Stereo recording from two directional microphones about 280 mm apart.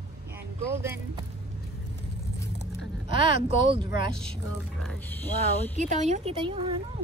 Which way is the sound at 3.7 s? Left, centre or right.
Centre.